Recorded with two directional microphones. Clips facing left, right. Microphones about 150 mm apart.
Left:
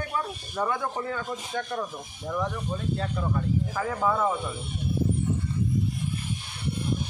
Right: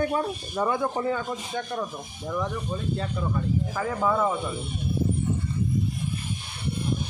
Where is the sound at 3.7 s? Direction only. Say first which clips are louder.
Right 2 dB; 5° right (ahead or behind).